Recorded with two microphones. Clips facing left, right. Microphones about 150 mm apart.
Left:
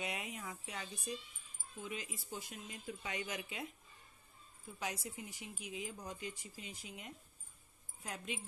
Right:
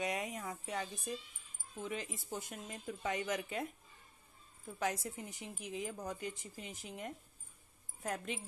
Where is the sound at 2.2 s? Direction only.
50° right (ahead or behind).